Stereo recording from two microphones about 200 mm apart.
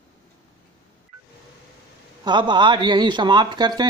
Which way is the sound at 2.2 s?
20° right (ahead or behind).